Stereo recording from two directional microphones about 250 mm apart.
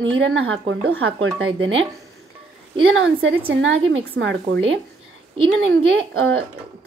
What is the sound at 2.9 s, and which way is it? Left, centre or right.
Speech, right.